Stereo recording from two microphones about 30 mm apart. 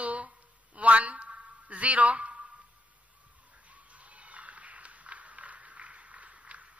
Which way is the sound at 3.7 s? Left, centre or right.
Right.